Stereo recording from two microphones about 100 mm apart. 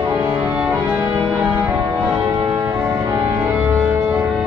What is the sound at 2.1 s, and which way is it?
Music, 30° right (ahead or behind).